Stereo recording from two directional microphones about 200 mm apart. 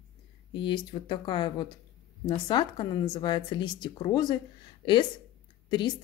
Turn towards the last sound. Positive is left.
turn(degrees=20)  # may be behind; listen again after turning